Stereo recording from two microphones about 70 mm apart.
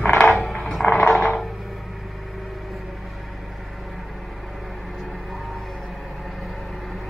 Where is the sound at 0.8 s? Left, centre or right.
Centre.